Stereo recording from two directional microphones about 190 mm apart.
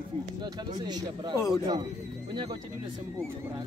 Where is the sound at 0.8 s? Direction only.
20° right (ahead or behind).